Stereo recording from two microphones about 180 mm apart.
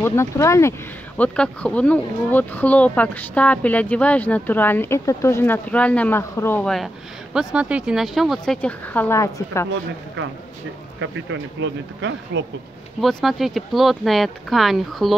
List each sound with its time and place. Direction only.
0.0 s speech: 15° left (ahead or behind)
7.3 s speech: 5° right (ahead or behind); by 9.7 s 15° left (ahead or behind)
11.0 s speech: 90° right
13.0 s speech: centre (ahead or behind)